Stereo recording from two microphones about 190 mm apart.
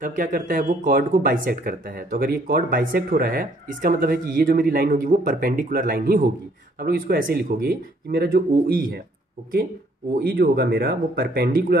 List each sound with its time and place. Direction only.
0.0 s speech: 45° right (ahead or behind)
10.2 s speech: 55° right (ahead or behind)